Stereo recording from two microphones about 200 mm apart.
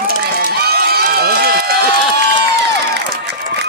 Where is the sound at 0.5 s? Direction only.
50° right (ahead or behind).